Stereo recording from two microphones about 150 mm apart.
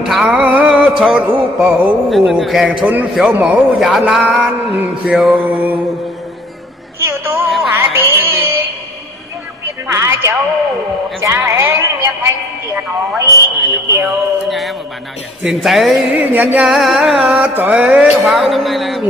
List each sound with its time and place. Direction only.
0.0 s music: 5° right (ahead or behind)
7.0 s a sound: 15° right (ahead or behind)
7.4 s music: centre (ahead or behind)
7.7 s music: 15° right (ahead or behind)
9.9 s a sound: 20° right (ahead or behind)
11.2 s music: 15° right (ahead or behind)
14.0 s music: centre (ahead or behind)